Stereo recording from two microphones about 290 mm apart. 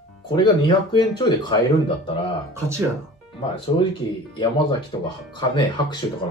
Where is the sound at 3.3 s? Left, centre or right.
Centre.